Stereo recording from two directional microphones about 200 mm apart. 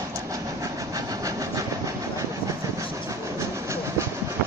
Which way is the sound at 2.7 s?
15° right (ahead or behind).